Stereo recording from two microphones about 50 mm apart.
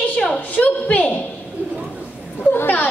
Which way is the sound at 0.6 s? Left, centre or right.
Left.